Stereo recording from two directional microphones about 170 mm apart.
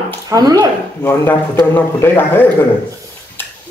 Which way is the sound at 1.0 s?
15° left (ahead or behind).